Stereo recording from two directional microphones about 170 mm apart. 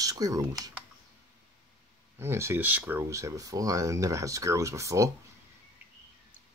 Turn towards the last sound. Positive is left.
turn(degrees=-20)  # may be behind; listen again after turning